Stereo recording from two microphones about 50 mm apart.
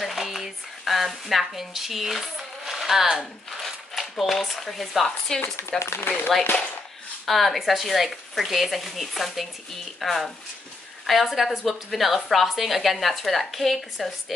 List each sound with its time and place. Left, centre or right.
0.0 s speech: centre
5.8 s speech: left
7.2 s a woman's voice: centre